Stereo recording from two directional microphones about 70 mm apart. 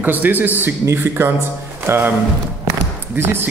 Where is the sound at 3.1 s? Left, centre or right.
Right.